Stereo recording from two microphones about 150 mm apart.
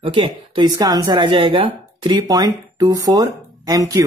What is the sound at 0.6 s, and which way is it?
Speech, 25° right (ahead or behind).